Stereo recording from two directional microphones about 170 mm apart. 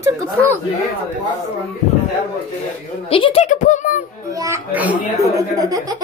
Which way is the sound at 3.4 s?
45° left (ahead or behind).